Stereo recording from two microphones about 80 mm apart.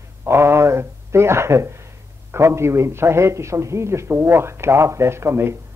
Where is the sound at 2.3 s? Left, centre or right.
Right.